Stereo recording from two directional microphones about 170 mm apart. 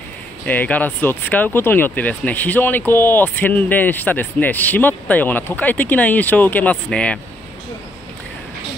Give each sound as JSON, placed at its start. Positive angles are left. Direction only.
{"t": 0.5, "sound": "speech", "side_deg": 10}